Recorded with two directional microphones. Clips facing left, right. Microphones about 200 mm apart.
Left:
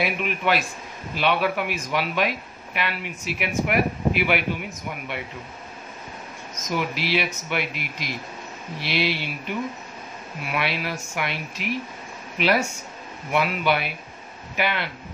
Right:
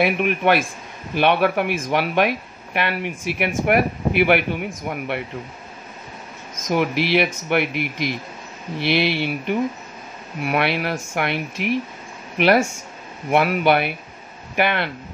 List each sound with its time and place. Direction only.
0.0 s a man's voice: 55° right (ahead or behind)
6.7 s speech: 55° right (ahead or behind)
8.8 s speech: 55° right (ahead or behind)